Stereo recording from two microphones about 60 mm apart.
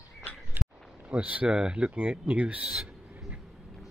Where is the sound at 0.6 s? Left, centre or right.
Right.